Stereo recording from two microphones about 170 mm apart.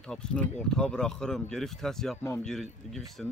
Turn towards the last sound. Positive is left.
turn(degrees=0)  # may be behind; listen again after turning